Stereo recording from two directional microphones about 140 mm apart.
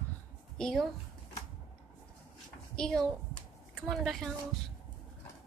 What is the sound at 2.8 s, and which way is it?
A woman's voice, 5° left (ahead or behind).